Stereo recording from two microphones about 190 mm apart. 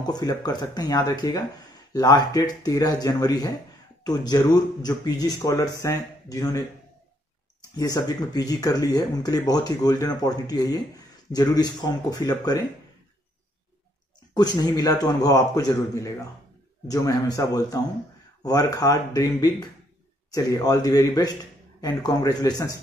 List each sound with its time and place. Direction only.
0.0 s speech: 20° left (ahead or behind)
7.7 s speech: 20° left (ahead or behind)
14.3 s speech: 20° left (ahead or behind)